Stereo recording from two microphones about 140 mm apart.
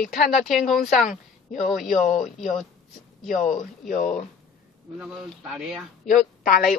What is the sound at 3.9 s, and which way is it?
Speech, 60° left (ahead or behind).